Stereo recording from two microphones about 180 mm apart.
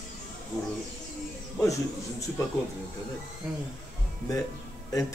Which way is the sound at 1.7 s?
15° left (ahead or behind).